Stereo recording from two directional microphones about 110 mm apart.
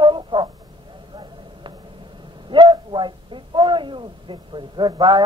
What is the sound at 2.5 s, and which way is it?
Speech, 45° right (ahead or behind).